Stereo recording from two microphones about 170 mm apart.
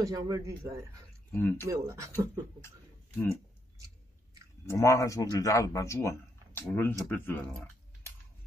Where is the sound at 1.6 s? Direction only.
15° right (ahead or behind).